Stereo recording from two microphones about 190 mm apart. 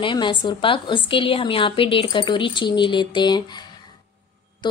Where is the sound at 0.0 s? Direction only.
25° left (ahead or behind).